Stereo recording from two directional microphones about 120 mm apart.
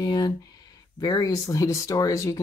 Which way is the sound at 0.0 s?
35° left (ahead or behind).